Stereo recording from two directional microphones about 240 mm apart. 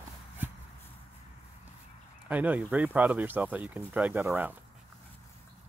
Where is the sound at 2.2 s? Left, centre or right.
Centre.